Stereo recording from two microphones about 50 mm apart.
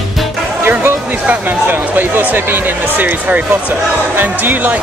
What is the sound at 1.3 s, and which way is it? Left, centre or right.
Speech, right.